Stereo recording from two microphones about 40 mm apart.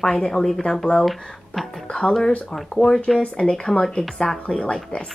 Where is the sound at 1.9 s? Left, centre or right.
Left.